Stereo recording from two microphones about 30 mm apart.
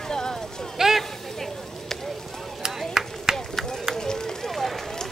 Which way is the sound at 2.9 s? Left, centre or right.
Right.